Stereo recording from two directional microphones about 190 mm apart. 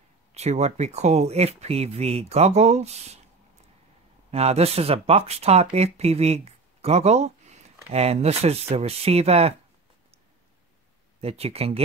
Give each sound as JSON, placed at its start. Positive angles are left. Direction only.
{"t": 0.3, "sound": "speech", "side_deg": -35}
{"t": 4.3, "sound": "speech", "side_deg": -35}
{"t": 11.1, "sound": "speech", "side_deg": -30}